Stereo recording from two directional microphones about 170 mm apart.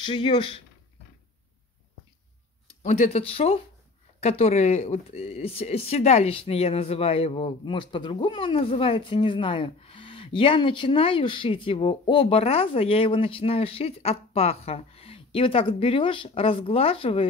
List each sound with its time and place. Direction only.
0.0 s speech: 30° left (ahead or behind)
2.8 s speech: 45° left (ahead or behind)